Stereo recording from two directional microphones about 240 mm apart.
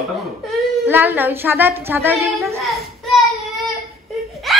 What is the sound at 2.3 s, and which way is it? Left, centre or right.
Child singing, centre.